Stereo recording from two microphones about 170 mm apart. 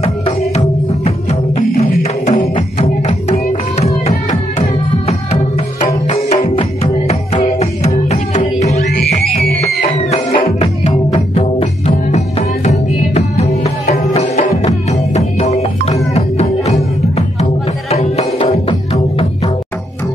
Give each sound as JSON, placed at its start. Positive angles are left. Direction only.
{"t": 0.0, "sound": "music", "side_deg": 35}